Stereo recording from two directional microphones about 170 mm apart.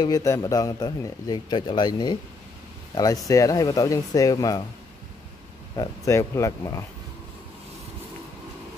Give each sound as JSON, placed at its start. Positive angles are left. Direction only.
{"t": 0.0, "sound": "a man's voice", "side_deg": 20}
{"t": 5.8, "sound": "speech", "side_deg": 15}